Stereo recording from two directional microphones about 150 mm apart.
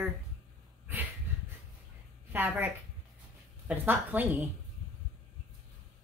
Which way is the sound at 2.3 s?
10° right (ahead or behind).